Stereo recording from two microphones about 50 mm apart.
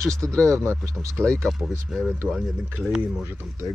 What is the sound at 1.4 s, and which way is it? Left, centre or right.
Speech, centre.